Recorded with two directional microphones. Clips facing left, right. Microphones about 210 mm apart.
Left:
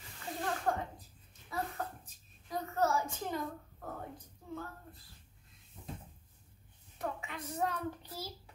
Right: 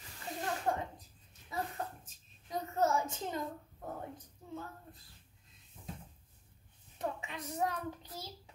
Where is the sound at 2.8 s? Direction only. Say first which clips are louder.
Right 1 dB; 20° right (ahead or behind).